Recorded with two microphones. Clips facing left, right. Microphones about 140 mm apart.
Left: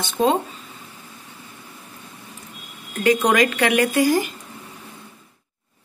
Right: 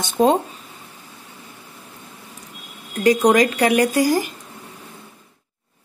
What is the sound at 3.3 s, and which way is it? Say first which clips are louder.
Speech: right 3 dB; 35° right (ahead or behind).